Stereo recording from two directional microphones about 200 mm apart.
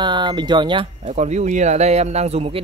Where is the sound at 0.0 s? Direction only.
20° right (ahead or behind).